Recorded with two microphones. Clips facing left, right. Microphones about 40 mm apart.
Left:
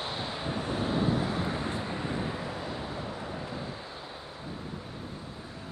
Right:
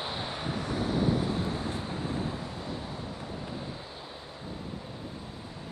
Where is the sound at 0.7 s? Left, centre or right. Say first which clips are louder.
Even; left.